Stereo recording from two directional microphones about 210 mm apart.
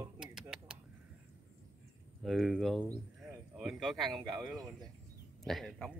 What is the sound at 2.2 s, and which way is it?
Speech, centre (ahead or behind).